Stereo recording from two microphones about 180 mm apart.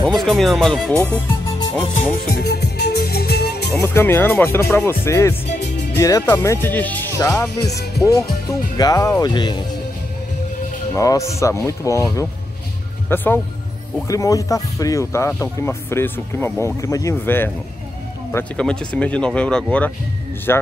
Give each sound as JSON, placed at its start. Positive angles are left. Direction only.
{"t": 0.0, "sound": "speech", "side_deg": 0}
{"t": 2.2, "sound": "music", "side_deg": 60}
{"t": 3.8, "sound": "speech", "side_deg": 15}
{"t": 5.5, "sound": "music", "side_deg": 70}
{"t": 5.9, "sound": "speech", "side_deg": 15}
{"t": 7.7, "sound": "heart sounds", "side_deg": 65}
{"t": 8.0, "sound": "speech", "side_deg": 20}
{"t": 11.0, "sound": "speech", "side_deg": 15}